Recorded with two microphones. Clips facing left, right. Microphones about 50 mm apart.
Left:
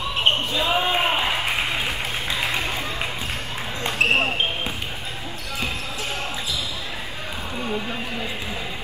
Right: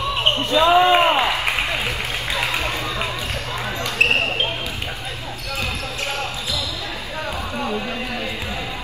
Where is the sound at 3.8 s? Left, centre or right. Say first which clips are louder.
Right 1 dB; left.